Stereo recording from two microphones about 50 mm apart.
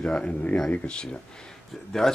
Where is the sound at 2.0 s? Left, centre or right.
Centre.